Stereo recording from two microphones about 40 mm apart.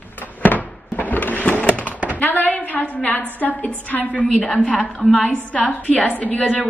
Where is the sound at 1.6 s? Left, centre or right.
Left.